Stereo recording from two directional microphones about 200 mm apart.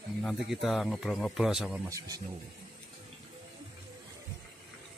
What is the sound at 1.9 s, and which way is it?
Speech, 15° right (ahead or behind).